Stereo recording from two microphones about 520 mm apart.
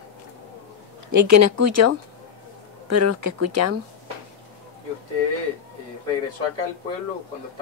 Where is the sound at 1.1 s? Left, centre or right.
Right.